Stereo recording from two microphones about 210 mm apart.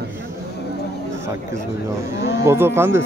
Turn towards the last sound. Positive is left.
turn(degrees=-10)  # may be behind; listen again after turning